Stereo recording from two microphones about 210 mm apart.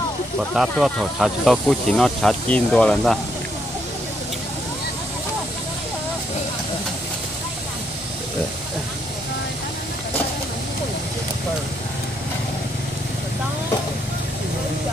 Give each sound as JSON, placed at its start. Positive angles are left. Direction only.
{"t": 0.4, "sound": "speech", "side_deg": 0}